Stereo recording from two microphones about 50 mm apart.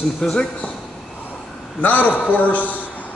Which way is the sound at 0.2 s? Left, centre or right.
Centre.